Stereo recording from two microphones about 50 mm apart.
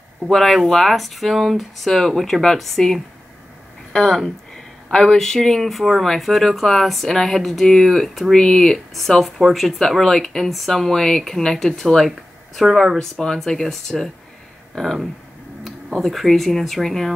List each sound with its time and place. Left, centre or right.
0.3 s speech: centre
8.4 s speech: centre
8.7 s speech: centre